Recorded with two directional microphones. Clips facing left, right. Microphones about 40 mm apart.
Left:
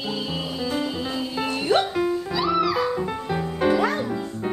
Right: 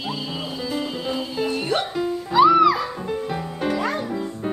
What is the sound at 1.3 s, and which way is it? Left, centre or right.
Music, centre.